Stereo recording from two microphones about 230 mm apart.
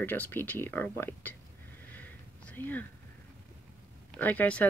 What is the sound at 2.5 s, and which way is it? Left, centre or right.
Speech, centre.